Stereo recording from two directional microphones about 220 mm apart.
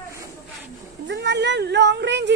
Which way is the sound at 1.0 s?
50° right (ahead or behind).